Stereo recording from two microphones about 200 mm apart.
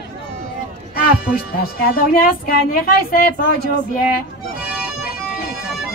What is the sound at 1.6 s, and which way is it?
Speech, 50° left (ahead or behind).